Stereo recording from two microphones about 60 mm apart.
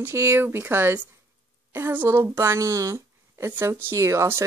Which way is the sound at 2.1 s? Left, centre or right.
Right.